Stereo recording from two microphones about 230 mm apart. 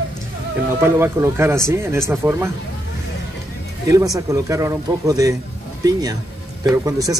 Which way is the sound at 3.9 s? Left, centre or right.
Centre.